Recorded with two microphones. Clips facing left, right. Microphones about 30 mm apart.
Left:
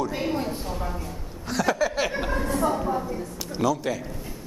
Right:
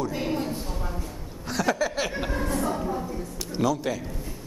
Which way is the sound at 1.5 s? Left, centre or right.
Centre.